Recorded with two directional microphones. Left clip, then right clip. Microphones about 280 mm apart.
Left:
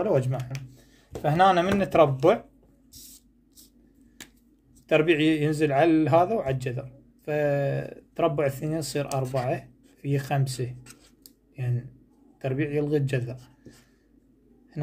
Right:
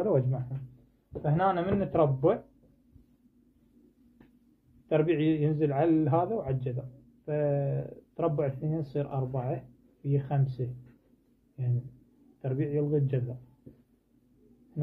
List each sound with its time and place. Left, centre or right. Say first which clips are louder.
0.0 s a man's voice: left 3 dB; centre
1.2 s speech: left 8 dB; left
4.8 s a man's voice: left 5 dB; left
12.4 s a man's voice: left 4 dB; left